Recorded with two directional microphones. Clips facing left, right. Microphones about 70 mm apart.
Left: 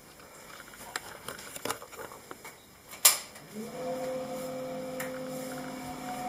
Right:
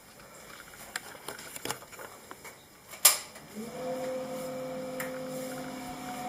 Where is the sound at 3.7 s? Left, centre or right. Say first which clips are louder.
Even; centre.